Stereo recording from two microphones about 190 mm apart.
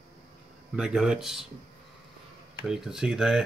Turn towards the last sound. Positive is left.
turn(degrees=0)  # may be behind; listen again after turning